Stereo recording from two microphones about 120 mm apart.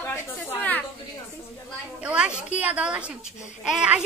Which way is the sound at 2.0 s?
10° right (ahead or behind).